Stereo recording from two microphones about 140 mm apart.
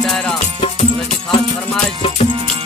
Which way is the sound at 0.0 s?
5° left (ahead or behind).